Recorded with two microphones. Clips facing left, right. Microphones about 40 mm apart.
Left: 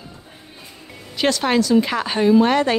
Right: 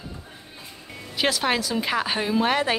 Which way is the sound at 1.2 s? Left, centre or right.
Centre.